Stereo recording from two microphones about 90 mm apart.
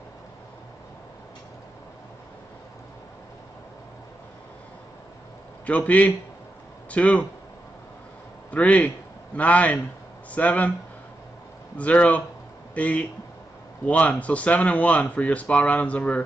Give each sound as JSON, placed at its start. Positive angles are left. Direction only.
{"t": 5.7, "sound": "speech", "side_deg": 15}
{"t": 8.5, "sound": "a man's voice", "side_deg": 15}
{"t": 11.7, "sound": "speech", "side_deg": 15}